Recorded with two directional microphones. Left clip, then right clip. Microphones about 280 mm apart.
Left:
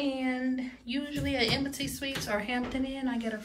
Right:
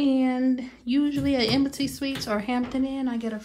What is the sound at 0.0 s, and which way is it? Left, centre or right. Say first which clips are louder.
Speech: right 8 dB; right.